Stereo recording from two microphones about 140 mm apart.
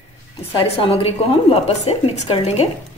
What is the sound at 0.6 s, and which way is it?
A woman's voice, 45° left (ahead or behind).